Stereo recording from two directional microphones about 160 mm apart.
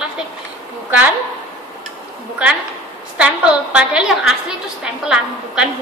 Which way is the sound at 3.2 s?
5° right (ahead or behind).